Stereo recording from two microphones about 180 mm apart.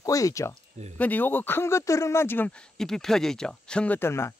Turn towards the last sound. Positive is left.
turn(degrees=15)  # may be behind; listen again after turning